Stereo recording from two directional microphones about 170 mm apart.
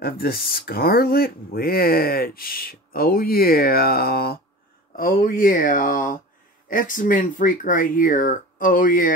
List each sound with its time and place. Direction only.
0.0 s speech: 60° left (ahead or behind)